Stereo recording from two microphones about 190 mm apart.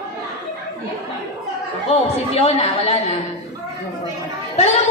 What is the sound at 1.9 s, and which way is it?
A woman's voice, 35° left (ahead or behind).